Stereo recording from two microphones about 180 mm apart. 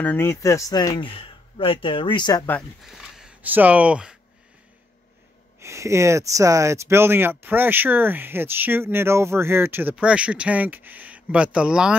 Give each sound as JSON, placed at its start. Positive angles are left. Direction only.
{"t": 0.0, "sound": "speech", "side_deg": 10}
{"t": 2.8, "sound": "speech", "side_deg": 0}
{"t": 5.6, "sound": "speech", "side_deg": -15}